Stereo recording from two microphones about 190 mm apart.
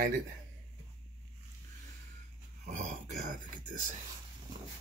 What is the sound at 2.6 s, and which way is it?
Speech, 40° right (ahead or behind).